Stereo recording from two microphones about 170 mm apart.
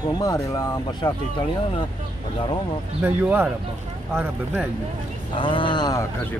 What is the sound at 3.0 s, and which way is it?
Speech, 10° right (ahead or behind).